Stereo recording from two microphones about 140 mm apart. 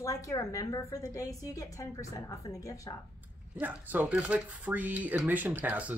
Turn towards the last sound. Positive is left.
turn(degrees=-10)  # may be behind; listen again after turning